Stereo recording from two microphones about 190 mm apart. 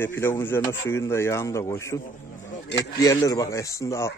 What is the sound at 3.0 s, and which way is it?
A man's voice, 20° left (ahead or behind).